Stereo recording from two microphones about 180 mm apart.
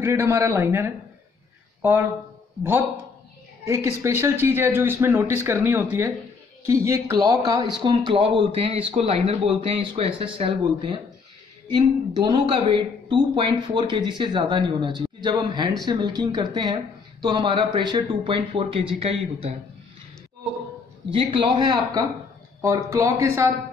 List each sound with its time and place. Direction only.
0.0 s speech: 15° right (ahead or behind)
3.6 s speech: 15° right (ahead or behind); by 19.5 s 35° right (ahead or behind)
21.1 s speech: 30° right (ahead or behind)